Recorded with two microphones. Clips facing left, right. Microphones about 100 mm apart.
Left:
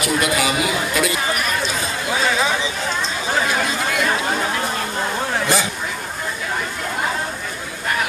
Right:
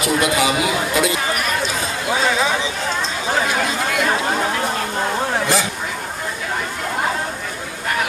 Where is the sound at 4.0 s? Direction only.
35° right (ahead or behind).